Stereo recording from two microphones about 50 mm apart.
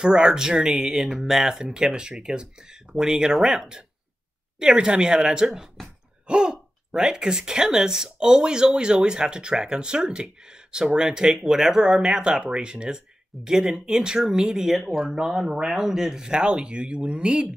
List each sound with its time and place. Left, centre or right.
0.0 s speech: centre